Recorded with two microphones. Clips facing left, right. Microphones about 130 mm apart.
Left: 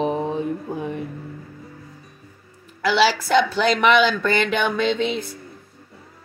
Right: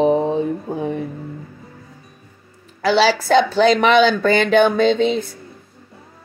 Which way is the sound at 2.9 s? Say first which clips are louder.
Right 3 dB; 30° right (ahead or behind).